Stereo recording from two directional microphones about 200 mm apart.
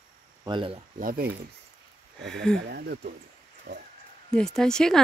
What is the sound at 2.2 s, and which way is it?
Speech, 5° left (ahead or behind).